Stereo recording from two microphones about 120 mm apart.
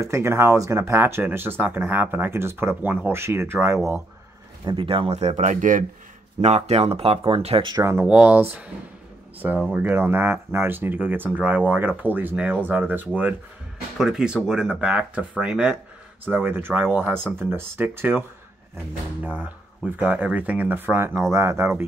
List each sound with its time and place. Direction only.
0.0 s speech: 20° right (ahead or behind)
4.6 s speech: 45° right (ahead or behind); by 5.9 s 90° right
6.4 s speech: 65° right (ahead or behind)
7.7 s speech: 25° right (ahead or behind)
8.1 s speech: 10° right (ahead or behind)
9.7 s speech: 15° right (ahead or behind)
19.2 s speech: 15° right (ahead or behind)